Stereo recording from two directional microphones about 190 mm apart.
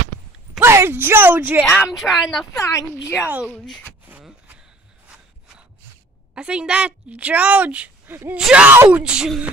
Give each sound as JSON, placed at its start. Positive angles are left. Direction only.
{"t": 0.6, "sound": "a sound", "side_deg": -15}
{"t": 1.6, "sound": "speech", "side_deg": 10}
{"t": 2.5, "sound": "speech", "side_deg": 15}
{"t": 3.2, "sound": "a woman's voice", "side_deg": -5}
{"t": 3.4, "sound": "speech", "side_deg": 5}
{"t": 4.1, "sound": "a sound", "side_deg": -5}
{"t": 6.3, "sound": "a woman's voice", "side_deg": -5}